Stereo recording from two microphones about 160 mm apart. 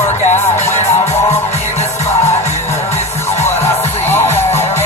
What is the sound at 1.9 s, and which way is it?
Music, 15° left (ahead or behind).